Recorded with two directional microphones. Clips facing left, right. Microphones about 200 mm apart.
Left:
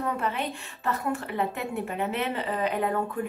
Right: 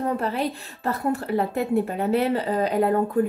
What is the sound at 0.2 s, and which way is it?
Speech, 35° right (ahead or behind).